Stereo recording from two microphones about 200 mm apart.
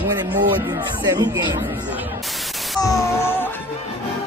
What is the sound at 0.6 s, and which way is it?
Speech, 20° right (ahead or behind).